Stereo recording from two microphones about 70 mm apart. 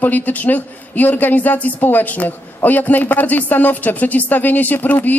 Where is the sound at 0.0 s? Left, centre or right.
Left.